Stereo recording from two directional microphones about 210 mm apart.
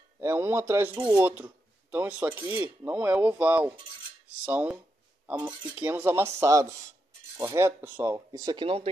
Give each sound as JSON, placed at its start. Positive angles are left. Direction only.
{"t": 0.2, "sound": "speech", "side_deg": -10}